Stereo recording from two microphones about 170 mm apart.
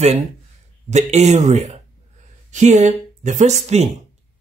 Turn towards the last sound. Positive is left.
turn(degrees=-40)  # may be behind; listen again after turning